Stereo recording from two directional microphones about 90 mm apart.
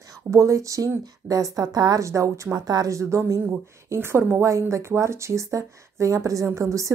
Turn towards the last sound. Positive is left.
turn(degrees=-35)  # may be behind; listen again after turning